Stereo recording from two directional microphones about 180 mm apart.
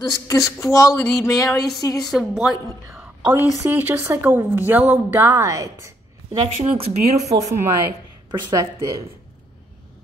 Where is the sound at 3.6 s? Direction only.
10° right (ahead or behind).